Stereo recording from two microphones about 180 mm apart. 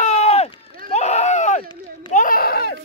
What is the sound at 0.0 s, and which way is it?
Run, 35° left (ahead or behind).